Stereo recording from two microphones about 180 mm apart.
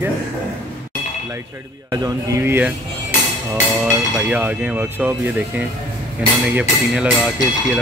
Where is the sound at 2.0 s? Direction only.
15° right (ahead or behind).